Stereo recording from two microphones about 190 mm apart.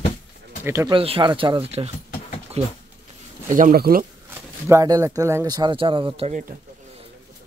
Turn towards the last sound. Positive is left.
turn(degrees=-40)  # may be behind; listen again after turning